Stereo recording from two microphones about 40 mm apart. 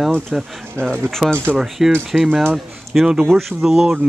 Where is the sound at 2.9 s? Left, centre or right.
Centre.